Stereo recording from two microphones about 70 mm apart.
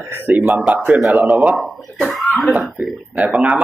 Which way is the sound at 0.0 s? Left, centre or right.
Right.